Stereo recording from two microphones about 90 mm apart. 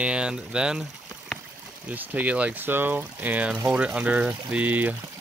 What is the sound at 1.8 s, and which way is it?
Speech, 20° right (ahead or behind).